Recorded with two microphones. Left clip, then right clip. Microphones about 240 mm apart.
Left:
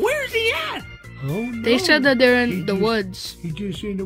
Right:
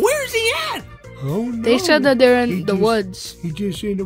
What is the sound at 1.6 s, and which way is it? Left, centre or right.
Speech, centre.